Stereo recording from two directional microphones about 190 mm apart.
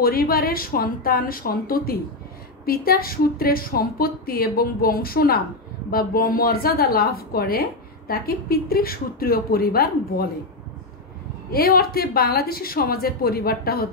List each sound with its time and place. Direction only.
0.0 s a woman's voice: 50° left (ahead or behind)
11.5 s a woman's voice: 55° left (ahead or behind)